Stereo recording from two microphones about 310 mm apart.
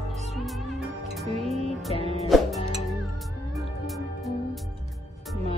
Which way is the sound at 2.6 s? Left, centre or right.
Centre.